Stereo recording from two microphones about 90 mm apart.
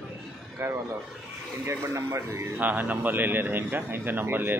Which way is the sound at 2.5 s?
20° right (ahead or behind).